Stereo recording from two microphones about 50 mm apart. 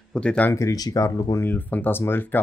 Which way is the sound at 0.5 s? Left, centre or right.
Left.